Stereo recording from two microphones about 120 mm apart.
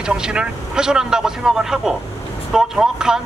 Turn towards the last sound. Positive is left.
turn(degrees=-5)  # may be behind; listen again after turning